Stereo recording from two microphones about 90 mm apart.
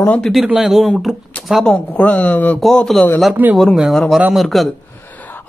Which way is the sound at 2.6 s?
5° left (ahead or behind).